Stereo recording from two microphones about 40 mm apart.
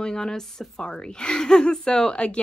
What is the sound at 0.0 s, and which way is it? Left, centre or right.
Speech, centre.